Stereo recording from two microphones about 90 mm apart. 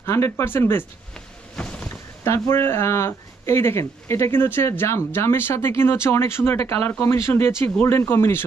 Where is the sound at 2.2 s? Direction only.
30° left (ahead or behind).